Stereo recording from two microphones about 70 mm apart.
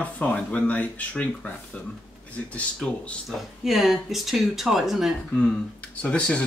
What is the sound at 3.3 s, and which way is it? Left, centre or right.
Speech, centre.